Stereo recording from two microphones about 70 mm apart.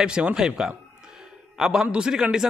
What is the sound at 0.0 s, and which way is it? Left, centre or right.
A man's voice, centre.